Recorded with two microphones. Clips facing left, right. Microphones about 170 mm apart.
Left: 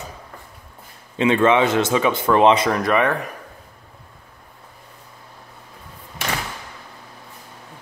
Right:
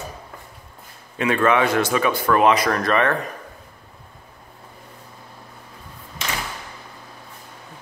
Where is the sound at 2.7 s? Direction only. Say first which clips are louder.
Left 1 dB; 15° left (ahead or behind).